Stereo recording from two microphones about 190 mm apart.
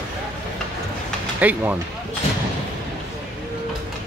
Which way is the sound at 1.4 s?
10° right (ahead or behind).